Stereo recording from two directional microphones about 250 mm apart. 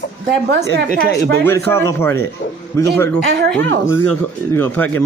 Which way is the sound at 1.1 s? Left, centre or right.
Centre.